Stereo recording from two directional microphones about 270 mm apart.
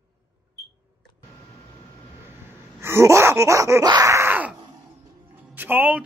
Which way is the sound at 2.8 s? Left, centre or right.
Centre.